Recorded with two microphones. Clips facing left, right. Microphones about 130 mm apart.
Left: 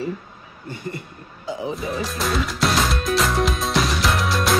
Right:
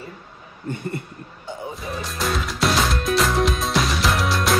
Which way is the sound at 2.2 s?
Centre (ahead or behind).